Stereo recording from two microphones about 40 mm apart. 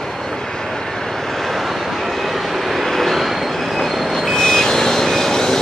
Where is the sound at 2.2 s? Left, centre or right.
Centre.